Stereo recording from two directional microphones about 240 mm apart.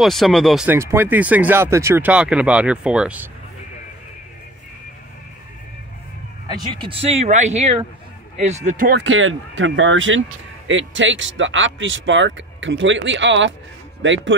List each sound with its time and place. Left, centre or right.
0.0 s speech: centre
6.4 s speech: centre; by 14.3 s right